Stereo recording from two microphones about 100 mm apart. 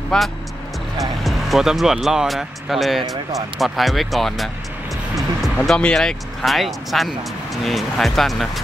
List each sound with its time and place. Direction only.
0.1 s speech: 5° left (ahead or behind)
5.7 s speech: 5° left (ahead or behind)